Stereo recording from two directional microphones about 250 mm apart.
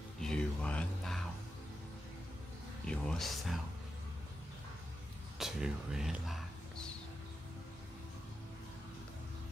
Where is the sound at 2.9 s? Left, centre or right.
Centre.